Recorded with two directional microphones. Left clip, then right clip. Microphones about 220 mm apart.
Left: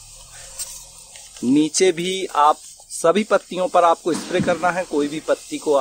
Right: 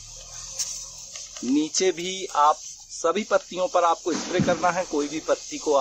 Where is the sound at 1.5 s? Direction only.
35° left (ahead or behind).